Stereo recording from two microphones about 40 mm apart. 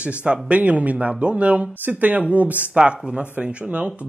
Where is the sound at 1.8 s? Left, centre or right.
Right.